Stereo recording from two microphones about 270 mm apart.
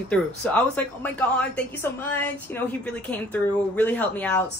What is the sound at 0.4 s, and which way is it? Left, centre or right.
A woman's voice, centre.